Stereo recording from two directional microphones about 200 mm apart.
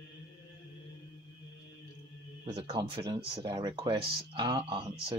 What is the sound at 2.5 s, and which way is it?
Speech, 20° right (ahead or behind).